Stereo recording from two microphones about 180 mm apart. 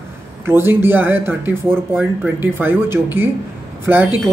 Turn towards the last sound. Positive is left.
turn(degrees=-10)  # may be behind; listen again after turning